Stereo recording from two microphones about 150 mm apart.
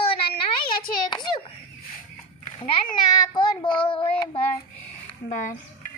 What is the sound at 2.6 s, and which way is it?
A child's voice, 30° left (ahead or behind).